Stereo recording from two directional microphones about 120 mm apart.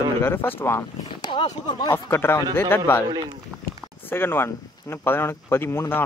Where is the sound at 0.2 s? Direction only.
20° left (ahead or behind).